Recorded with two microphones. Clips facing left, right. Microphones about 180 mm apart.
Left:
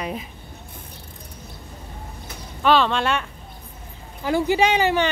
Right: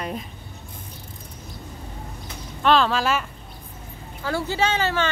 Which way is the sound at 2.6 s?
Centre (ahead or behind).